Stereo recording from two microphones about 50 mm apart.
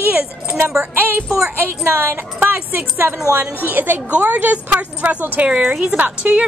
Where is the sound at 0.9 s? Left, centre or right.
Right.